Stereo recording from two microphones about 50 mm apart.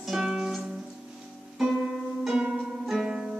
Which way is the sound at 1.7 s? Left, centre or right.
Centre.